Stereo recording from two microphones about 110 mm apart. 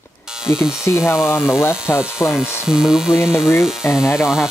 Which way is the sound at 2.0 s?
5° right (ahead or behind).